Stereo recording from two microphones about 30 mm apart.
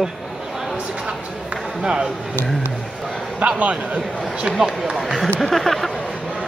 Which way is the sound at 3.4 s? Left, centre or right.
Right.